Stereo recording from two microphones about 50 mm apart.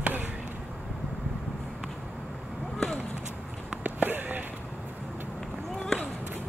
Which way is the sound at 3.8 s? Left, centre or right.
Right.